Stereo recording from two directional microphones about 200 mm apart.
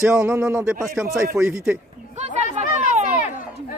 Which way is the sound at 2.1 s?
35° right (ahead or behind).